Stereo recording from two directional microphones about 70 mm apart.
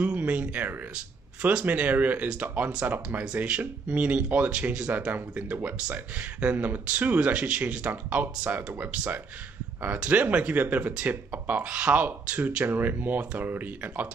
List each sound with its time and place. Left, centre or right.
0.0 s speech: right